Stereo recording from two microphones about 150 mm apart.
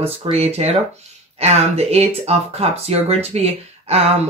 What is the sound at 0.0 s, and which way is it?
Speech, 45° right (ahead or behind).